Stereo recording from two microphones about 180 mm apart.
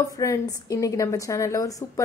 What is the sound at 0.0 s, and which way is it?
A woman's voice, 20° left (ahead or behind).